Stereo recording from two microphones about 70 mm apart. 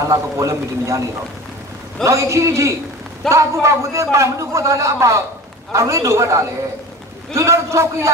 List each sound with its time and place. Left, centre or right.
0.0 s a man's voice: right
2.0 s a man's voice: right
3.2 s a man's voice: centre
3.6 s a man's voice: right